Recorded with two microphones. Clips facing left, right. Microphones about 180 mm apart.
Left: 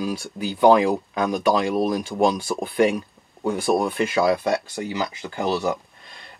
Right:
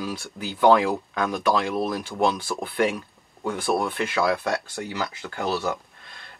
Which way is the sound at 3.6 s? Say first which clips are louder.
Left 3 dB; 15° left (ahead or behind).